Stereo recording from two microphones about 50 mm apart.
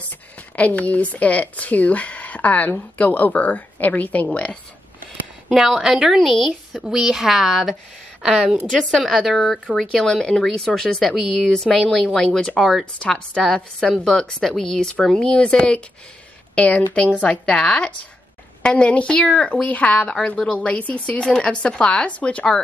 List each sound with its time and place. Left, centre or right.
0.6 s a woman's voice: left
5.7 s a woman's voice: centre
8.7 s a woman's voice: centre
10.0 s speech: centre
12.5 s a woman's voice: centre
13.0 s speech: centre
20.2 s speech: centre
20.5 s speech: left